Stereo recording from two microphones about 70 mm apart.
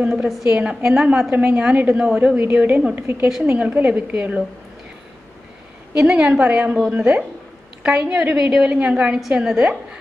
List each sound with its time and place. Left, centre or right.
0.1 s a woman's voice: centre
0.6 s a woman's voice: right
0.8 s a woman's voice: centre
2.1 s a woman's voice: right
5.9 s a woman's voice: centre